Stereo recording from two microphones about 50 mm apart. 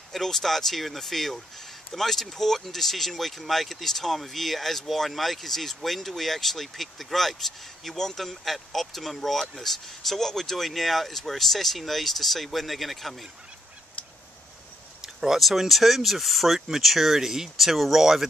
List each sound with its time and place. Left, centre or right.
0.1 s speech: centre
15.1 s speech: centre